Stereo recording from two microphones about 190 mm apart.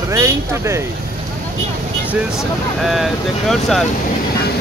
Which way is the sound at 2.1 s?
Centre (ahead or behind).